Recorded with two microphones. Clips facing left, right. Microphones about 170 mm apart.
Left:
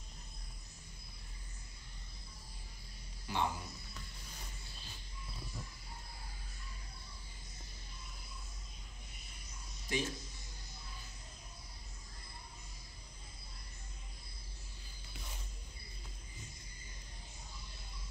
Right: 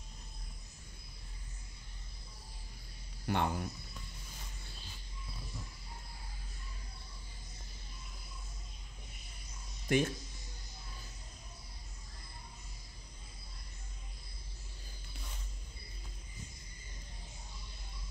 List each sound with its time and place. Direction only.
3.3 s speech: 60° right (ahead or behind)
9.9 s speech: 60° right (ahead or behind)